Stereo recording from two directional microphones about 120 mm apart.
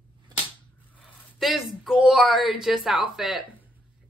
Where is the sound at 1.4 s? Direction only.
Centre (ahead or behind).